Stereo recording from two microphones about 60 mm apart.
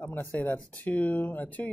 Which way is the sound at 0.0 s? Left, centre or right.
Left.